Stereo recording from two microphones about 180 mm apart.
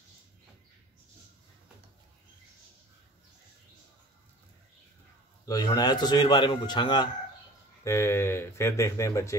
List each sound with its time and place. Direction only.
5.4 s a man's voice: 20° left (ahead or behind)